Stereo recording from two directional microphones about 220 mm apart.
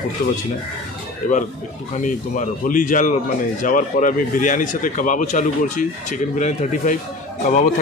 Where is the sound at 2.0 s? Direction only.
35° left (ahead or behind).